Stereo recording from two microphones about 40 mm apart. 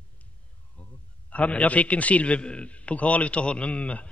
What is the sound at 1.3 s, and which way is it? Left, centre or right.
A man's voice, left.